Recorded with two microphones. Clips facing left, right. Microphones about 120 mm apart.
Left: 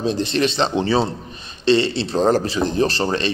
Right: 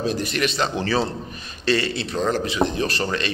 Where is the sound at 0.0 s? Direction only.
25° left (ahead or behind).